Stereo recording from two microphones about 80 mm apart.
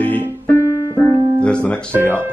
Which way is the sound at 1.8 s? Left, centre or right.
Right.